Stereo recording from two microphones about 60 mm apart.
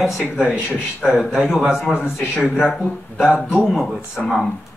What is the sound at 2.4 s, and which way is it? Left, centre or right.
Speech, centre.